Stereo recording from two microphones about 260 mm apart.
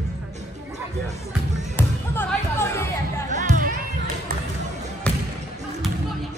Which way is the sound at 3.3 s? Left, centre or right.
Right.